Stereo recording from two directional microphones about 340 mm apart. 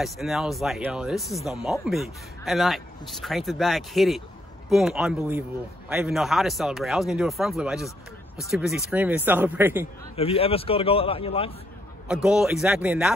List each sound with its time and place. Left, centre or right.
0.0 s speech: centre
10.1 s a man's voice: centre
12.1 s speech: centre